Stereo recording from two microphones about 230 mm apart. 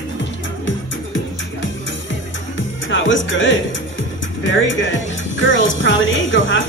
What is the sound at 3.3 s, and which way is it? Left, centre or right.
Speech, left.